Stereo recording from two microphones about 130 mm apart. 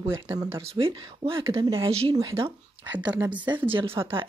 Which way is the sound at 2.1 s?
30° right (ahead or behind).